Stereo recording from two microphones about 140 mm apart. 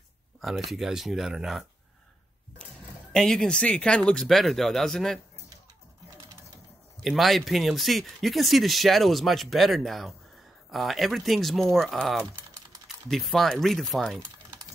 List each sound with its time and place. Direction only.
0.4 s speech: centre (ahead or behind)
2.6 s speech: 5° left (ahead or behind)
7.0 s speech: centre (ahead or behind)